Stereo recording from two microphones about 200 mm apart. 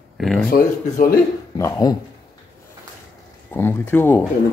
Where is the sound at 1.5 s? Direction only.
15° left (ahead or behind).